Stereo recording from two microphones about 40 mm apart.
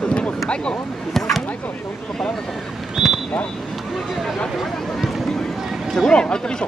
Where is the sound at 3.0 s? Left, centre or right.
Centre.